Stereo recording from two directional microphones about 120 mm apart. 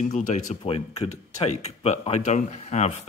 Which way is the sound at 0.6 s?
55° left (ahead or behind).